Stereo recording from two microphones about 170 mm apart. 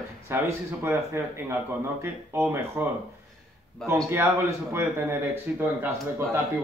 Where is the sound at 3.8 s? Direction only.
5° left (ahead or behind).